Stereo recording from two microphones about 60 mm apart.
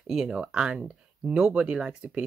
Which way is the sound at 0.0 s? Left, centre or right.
Centre.